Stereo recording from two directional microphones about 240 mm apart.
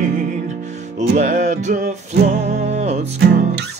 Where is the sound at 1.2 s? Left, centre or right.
Right.